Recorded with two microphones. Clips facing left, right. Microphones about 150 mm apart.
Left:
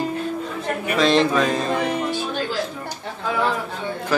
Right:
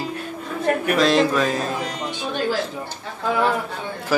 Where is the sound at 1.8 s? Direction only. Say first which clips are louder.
Left 5 dB; 60° left (ahead or behind).